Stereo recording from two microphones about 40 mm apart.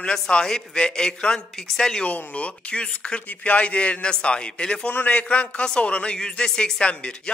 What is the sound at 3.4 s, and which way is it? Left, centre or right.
Speech, left.